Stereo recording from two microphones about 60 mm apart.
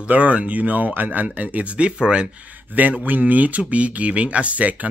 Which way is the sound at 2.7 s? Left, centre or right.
Right.